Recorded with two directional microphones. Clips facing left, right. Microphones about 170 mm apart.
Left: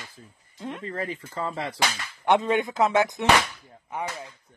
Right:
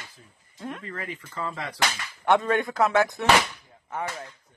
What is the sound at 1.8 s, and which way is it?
Speech, 20° left (ahead or behind).